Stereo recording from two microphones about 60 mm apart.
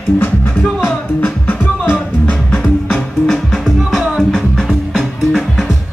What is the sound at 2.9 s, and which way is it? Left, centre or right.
Music, centre.